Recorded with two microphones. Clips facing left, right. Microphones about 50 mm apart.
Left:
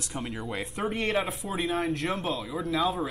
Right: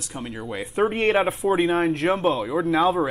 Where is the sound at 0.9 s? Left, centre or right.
Right.